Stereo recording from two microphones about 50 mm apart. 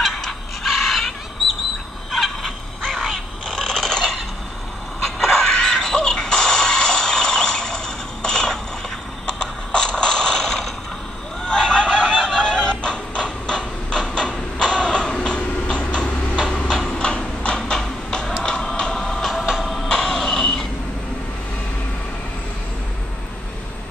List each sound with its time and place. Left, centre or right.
0.0 s fowl: centre
3.4 s mechanisms: centre
5.0 s music: centre
9.2 s a sound: centre
11.4 s fowl: centre
12.2 s music: centre
16.4 s a sound: left
18.4 s music: centre